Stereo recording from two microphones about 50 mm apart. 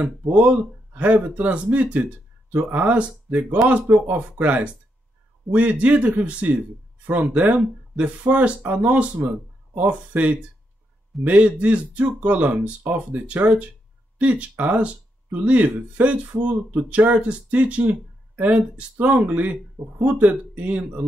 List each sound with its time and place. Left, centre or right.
0.3 s speech: right
3.9 s speech: right